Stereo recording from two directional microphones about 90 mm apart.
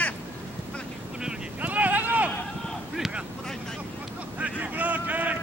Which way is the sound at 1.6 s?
15° right (ahead or behind).